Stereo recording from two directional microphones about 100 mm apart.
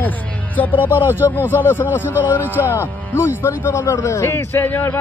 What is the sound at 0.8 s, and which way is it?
Speech, 20° right (ahead or behind).